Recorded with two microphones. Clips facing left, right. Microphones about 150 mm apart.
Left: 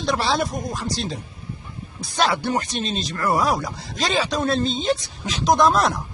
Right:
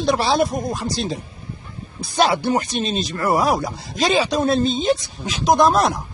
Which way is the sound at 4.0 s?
10° right (ahead or behind).